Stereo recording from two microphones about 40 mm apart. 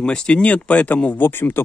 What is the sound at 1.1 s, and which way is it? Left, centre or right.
Speech, left.